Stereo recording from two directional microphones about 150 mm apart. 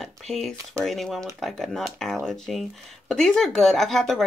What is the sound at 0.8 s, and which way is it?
Speech, centre (ahead or behind).